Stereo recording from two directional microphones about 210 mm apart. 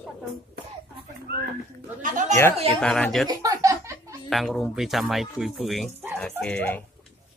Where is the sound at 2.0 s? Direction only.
40° right (ahead or behind).